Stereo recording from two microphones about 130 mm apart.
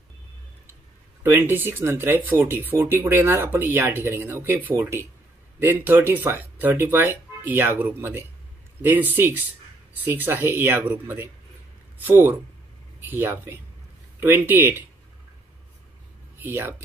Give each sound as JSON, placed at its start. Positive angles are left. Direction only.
{"t": 1.2, "sound": "speech", "side_deg": -15}
{"t": 16.3, "sound": "speech", "side_deg": -15}